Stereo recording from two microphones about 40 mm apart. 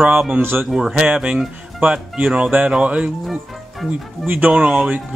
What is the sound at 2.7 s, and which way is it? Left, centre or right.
Speech, right.